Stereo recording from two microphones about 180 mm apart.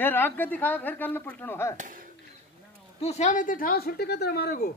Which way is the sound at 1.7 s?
45° right (ahead or behind).